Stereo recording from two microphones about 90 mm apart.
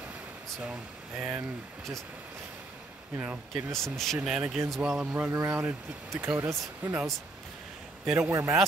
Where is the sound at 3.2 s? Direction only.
15° right (ahead or behind).